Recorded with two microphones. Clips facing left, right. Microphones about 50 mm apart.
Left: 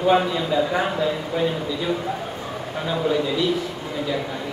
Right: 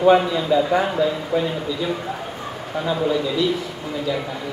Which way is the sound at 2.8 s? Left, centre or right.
Centre.